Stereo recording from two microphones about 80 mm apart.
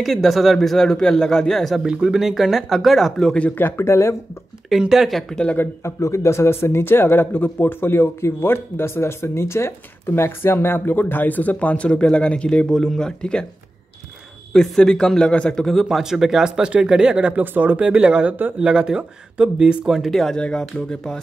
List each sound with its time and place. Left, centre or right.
0.0 s speech: centre
1.9 s speech: centre
3.4 s speech: left
4.6 s speech: centre
5.6 s speech: left; by 13.5 s centre
14.5 s a man's voice: centre
15.7 s speech: centre